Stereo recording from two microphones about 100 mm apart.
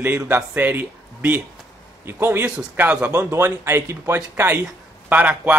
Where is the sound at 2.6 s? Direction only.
10° right (ahead or behind).